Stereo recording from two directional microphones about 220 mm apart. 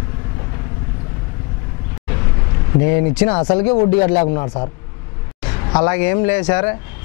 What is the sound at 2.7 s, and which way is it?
A man's voice, 15° left (ahead or behind).